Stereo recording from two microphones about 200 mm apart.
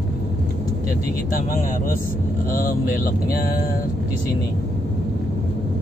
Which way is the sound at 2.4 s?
45° left (ahead or behind).